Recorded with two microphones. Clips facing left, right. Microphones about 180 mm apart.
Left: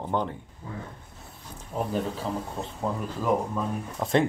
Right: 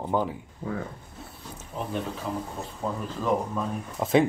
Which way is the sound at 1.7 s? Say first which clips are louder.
Left 4 dB; 45° left (ahead or behind).